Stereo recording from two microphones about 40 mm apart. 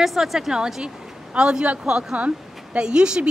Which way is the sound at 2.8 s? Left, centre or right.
Right.